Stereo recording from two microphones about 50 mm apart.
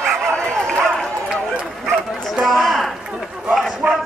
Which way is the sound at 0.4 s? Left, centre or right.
Centre.